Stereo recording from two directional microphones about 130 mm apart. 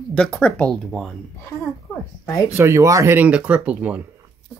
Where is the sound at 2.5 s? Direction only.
20° right (ahead or behind).